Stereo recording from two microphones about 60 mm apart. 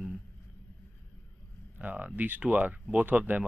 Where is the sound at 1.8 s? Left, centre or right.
Right.